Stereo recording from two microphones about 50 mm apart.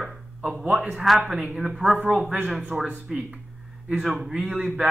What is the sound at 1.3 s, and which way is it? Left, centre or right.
Speech, centre.